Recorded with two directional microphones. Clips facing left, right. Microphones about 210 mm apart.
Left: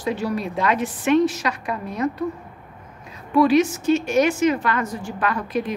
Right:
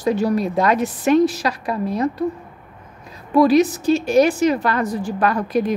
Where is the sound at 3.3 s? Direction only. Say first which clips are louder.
Right 3 dB; 40° right (ahead or behind).